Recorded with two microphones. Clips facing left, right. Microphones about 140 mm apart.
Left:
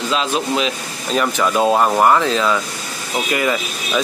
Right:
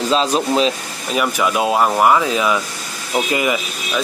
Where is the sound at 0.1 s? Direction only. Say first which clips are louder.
Right 3 dB; 35° right (ahead or behind).